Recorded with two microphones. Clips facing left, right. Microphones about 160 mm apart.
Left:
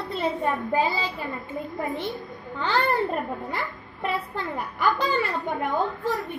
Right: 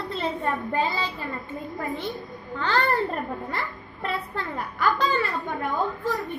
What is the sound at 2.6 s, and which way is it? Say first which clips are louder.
A woman's voice: even; 15° left (ahead or behind).